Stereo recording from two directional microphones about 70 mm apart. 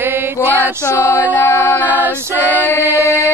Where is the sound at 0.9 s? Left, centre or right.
Left.